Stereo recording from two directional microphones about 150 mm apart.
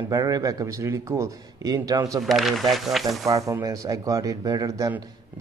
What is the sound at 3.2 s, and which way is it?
Speech, 20° right (ahead or behind).